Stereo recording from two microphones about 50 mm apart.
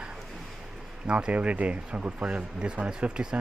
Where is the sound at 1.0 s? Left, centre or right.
Right.